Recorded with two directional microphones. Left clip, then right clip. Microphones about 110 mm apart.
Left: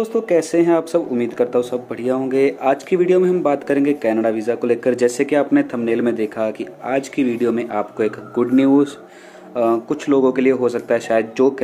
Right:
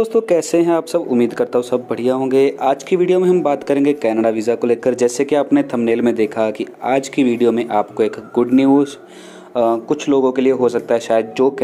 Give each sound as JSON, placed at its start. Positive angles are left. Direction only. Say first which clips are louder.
{"t": 0.0, "sound": "speech", "louder": "right 2 dB", "side_deg": -45}
{"t": 4.8, "sound": "speech", "louder": "right 1 dB", "side_deg": -25}